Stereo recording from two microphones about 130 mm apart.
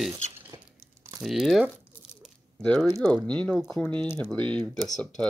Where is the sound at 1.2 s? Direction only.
Centre (ahead or behind).